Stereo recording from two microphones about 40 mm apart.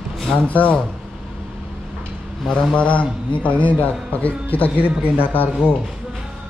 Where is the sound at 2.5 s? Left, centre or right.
Left.